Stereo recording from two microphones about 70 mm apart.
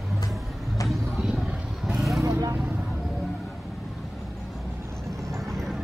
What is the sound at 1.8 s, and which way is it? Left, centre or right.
Vehicle, centre.